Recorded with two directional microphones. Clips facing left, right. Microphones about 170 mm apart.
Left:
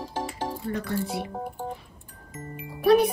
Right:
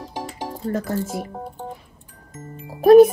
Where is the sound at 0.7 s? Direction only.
45° right (ahead or behind).